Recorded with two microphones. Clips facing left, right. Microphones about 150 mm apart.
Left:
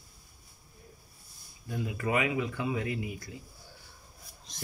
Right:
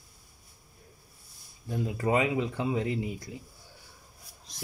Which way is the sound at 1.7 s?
30° right (ahead or behind).